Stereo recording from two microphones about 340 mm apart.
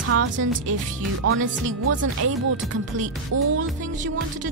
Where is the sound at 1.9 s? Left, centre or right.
Right.